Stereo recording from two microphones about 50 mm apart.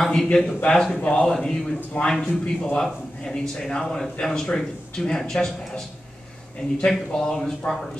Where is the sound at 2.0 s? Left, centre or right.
Left.